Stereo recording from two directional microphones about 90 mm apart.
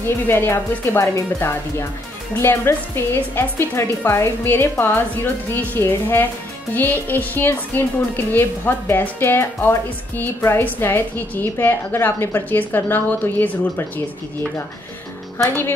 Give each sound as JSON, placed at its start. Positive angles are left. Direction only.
{"t": 0.0, "sound": "a woman's voice", "side_deg": 25}
{"t": 15.3, "sound": "speech", "side_deg": 25}